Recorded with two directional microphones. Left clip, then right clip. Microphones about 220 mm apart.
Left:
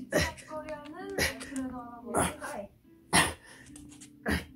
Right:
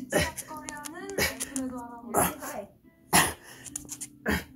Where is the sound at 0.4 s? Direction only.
50° right (ahead or behind).